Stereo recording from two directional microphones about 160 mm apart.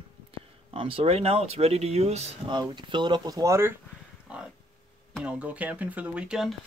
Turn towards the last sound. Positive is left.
turn(degrees=-5)  # may be behind; listen again after turning